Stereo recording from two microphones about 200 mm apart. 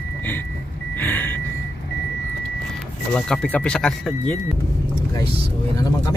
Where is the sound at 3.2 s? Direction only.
5° left (ahead or behind).